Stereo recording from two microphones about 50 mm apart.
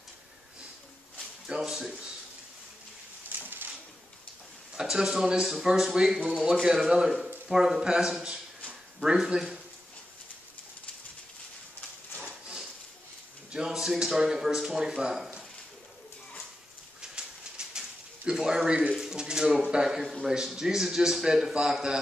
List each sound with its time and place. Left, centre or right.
1.6 s speech: centre
3.3 s a sound: right
4.7 s a man's voice: centre
13.5 s a man's voice: centre
17.0 s pigeon: centre
19.6 s a man's voice: centre